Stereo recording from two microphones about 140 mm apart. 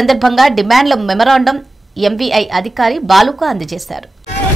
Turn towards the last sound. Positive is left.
turn(degrees=0)  # may be behind; listen again after turning